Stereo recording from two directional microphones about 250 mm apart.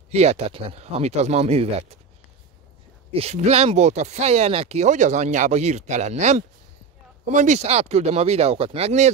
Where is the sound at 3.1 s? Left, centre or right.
Right.